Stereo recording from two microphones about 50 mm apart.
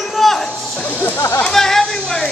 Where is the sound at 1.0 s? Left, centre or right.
Left.